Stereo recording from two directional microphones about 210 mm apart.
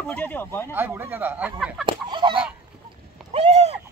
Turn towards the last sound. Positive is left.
turn(degrees=-30)  # may be behind; listen again after turning